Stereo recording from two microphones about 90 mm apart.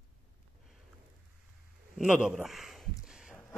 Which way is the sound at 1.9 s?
10° right (ahead or behind).